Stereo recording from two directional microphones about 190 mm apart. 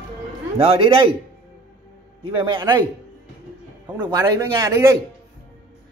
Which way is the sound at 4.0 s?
20° right (ahead or behind).